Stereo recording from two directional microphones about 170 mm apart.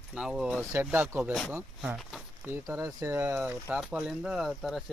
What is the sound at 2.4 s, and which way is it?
Speech, 15° right (ahead or behind).